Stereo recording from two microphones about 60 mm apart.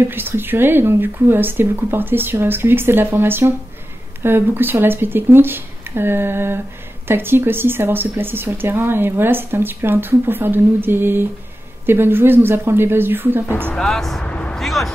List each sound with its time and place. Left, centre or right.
0.1 s speech: right
13.7 s speech: centre
14.2 s vehicle: left
14.5 s a sound: centre